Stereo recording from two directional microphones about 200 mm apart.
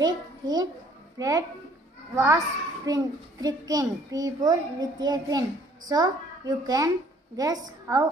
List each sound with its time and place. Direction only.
0.0 s a child's voice: 20° right (ahead or behind)